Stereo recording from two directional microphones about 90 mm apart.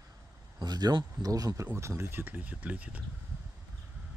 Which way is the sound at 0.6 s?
50° right (ahead or behind).